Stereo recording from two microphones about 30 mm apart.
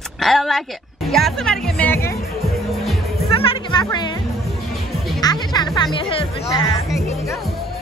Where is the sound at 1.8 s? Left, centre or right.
Left.